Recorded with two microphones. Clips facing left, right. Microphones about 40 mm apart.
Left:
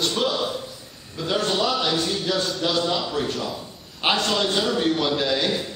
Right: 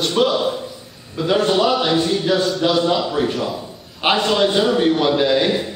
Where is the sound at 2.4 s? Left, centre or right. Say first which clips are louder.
Right 6 dB; centre.